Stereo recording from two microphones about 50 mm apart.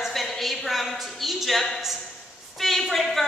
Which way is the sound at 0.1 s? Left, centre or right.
Centre.